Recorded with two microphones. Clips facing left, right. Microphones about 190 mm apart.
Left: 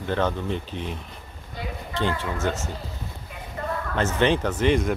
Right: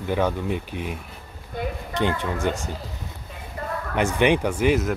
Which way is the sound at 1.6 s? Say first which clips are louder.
Right 6 dB; 55° right (ahead or behind).